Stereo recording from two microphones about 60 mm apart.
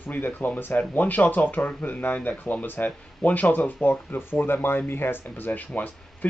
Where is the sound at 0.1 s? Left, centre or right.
Left.